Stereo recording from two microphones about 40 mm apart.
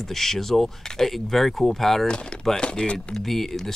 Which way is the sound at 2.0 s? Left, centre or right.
Left.